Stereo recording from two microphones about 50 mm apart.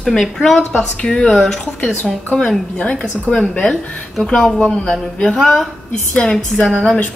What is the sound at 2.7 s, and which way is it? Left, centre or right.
Speech, left.